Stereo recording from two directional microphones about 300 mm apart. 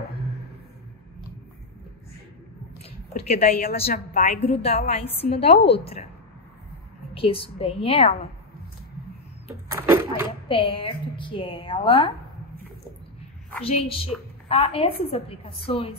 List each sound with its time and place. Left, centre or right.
2.8 s a woman's voice: left
7.2 s a woman's voice: centre
9.7 s a sound: centre
10.5 s a woman's voice: centre
13.7 s a woman's voice: centre